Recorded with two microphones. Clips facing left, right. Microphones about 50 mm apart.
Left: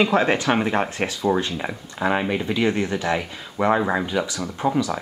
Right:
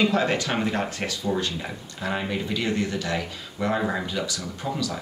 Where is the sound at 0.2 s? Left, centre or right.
Left.